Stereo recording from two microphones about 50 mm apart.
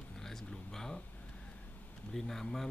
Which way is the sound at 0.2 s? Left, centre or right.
Centre.